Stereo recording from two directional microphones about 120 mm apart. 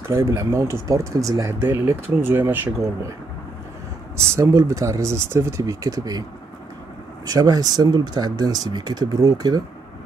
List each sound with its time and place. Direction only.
0.0 s speech: 20° right (ahead or behind)
4.4 s speech: 25° right (ahead or behind)
7.2 s speech: 30° right (ahead or behind)